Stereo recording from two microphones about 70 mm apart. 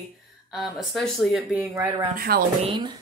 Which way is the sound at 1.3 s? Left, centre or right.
Centre.